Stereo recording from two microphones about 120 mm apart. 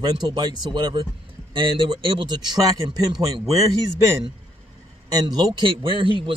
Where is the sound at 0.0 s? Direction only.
35° right (ahead or behind).